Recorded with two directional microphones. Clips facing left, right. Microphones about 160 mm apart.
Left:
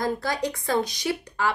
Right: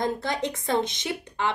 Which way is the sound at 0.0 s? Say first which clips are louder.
Left 1 dB; 25° right (ahead or behind).